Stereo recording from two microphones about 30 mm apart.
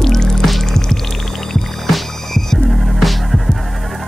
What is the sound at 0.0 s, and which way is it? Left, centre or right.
Music, centre.